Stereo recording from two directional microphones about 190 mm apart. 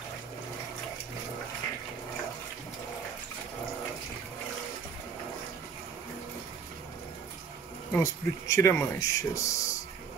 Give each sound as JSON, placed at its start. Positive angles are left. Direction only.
{"t": 7.9, "sound": "speech", "side_deg": 15}